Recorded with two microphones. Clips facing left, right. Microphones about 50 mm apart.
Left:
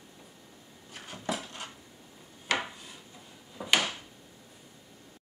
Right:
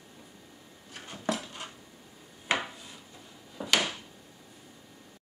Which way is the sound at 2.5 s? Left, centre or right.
Right.